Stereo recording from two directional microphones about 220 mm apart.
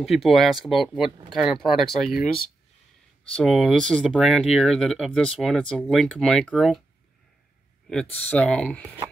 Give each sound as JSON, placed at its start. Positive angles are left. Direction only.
{"t": 0.0, "sound": "speech", "side_deg": 0}
{"t": 3.3, "sound": "speech", "side_deg": 5}
{"t": 7.9, "sound": "speech", "side_deg": 5}